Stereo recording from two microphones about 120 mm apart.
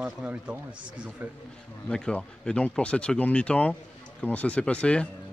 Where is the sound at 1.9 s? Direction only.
5° left (ahead or behind).